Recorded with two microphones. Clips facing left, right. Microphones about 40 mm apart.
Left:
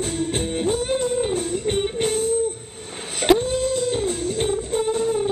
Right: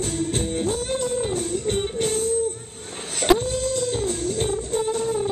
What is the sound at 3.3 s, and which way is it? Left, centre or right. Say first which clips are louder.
Music: left 2 dB; centre.